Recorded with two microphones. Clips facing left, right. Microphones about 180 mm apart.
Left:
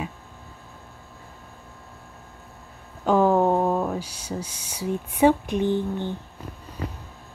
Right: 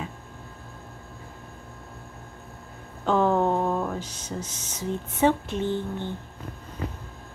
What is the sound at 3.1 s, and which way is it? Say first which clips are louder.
Speech: left 3 dB; 10° left (ahead or behind).